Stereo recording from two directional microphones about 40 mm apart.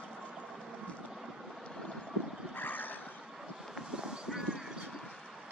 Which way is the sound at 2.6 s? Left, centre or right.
Left.